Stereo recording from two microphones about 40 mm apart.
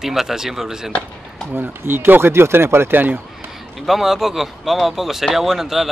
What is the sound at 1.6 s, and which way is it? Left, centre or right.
Speech, right.